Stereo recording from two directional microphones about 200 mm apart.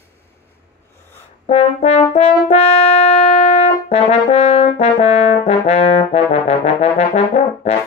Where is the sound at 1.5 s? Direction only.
30° left (ahead or behind).